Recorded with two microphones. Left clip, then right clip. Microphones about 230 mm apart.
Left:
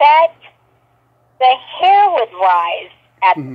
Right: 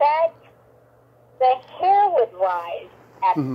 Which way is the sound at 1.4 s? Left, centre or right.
Left.